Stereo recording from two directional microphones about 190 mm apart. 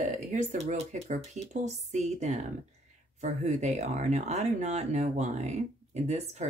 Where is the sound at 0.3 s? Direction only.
40° right (ahead or behind).